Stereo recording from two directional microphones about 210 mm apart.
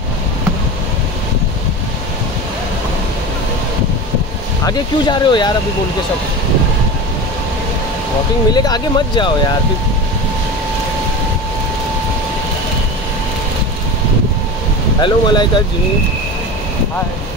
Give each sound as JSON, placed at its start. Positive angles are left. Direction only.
{"t": 4.6, "sound": "speech", "side_deg": 20}
{"t": 8.5, "sound": "speech", "side_deg": 20}
{"t": 15.0, "sound": "speech", "side_deg": 20}